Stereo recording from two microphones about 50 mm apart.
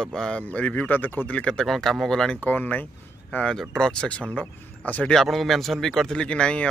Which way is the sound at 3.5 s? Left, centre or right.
Centre.